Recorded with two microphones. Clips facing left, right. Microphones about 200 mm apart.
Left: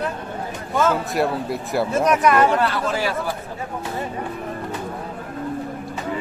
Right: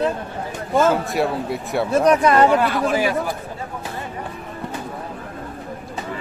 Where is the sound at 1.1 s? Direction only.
Centre (ahead or behind).